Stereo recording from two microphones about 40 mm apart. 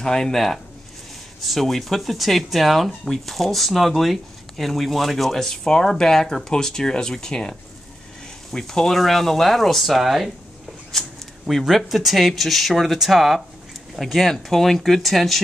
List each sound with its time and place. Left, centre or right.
0.0 s speech: centre
5.5 s speech: centre
10.9 s speech: centre
11.4 s speech: centre